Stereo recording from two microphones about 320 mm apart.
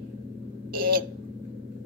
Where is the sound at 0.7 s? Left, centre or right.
Right.